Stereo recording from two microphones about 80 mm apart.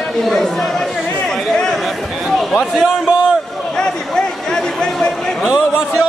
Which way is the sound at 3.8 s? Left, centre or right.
Centre.